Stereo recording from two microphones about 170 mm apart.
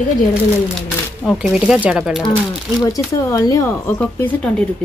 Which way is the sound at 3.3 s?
20° left (ahead or behind).